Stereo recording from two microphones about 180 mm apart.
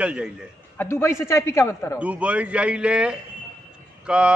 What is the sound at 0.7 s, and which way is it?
A man's voice, 15° left (ahead or behind).